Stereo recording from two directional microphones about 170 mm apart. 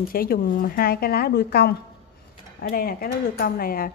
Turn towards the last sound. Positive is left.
turn(degrees=60)  # may be behind; listen again after turning